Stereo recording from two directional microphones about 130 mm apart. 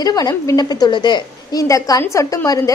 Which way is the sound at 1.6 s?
25° left (ahead or behind).